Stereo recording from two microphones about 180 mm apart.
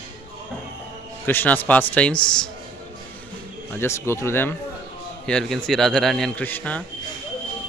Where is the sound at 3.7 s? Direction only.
15° left (ahead or behind).